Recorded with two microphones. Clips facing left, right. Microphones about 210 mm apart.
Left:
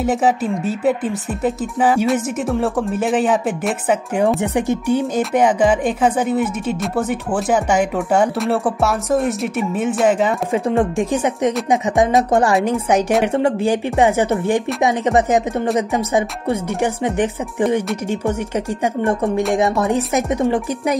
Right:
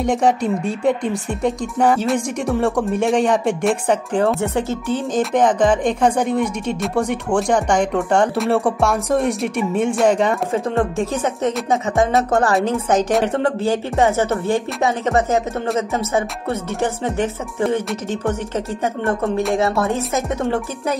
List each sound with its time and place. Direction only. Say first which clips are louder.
0.0 s speech: even; 5° left (ahead or behind)
18.9 s speech: left 2 dB; 15° left (ahead or behind)